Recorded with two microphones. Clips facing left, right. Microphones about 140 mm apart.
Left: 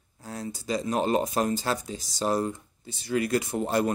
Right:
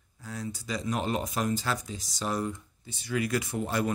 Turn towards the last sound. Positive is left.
turn(degrees=35)  # may be behind; listen again after turning